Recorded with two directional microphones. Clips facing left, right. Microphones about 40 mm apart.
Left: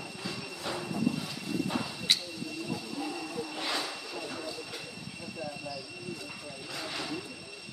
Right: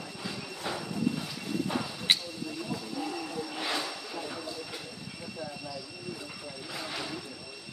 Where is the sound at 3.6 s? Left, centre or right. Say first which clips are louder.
Right 1 dB; centre.